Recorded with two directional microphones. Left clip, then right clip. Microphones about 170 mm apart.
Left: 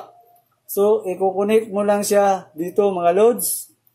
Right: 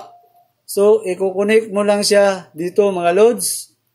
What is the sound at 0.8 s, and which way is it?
Speech, 25° right (ahead or behind).